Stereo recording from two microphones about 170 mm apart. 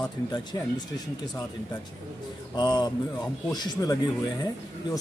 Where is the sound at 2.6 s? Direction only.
25° left (ahead or behind).